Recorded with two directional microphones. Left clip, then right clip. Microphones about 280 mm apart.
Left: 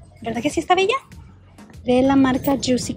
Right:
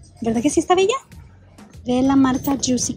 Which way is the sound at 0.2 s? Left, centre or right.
Centre.